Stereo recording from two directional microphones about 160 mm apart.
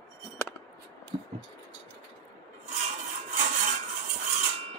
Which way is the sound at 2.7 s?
45° right (ahead or behind).